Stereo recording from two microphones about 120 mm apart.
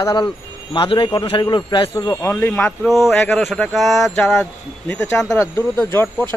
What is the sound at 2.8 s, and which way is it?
Speech, centre (ahead or behind).